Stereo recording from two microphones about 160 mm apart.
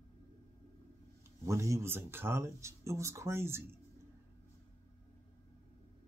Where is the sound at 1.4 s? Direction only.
20° right (ahead or behind).